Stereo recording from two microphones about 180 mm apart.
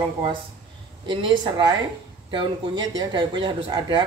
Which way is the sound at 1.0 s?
25° right (ahead or behind).